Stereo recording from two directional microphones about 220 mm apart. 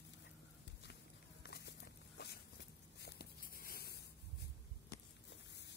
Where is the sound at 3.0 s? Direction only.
50° left (ahead or behind).